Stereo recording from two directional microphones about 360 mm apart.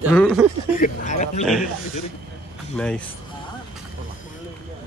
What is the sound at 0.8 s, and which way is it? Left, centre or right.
Speech, left.